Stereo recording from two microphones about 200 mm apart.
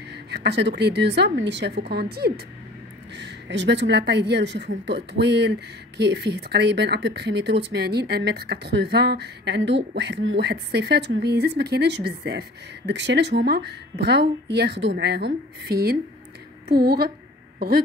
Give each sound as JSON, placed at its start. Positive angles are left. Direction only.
{"t": 0.1, "sound": "a woman's voice", "side_deg": -55}